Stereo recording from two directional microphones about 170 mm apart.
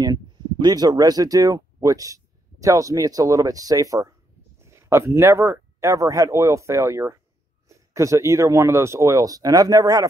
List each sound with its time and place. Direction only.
0.0 s speech: 25° right (ahead or behind)